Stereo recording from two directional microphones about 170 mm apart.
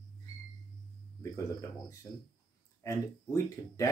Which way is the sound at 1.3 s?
20° left (ahead or behind).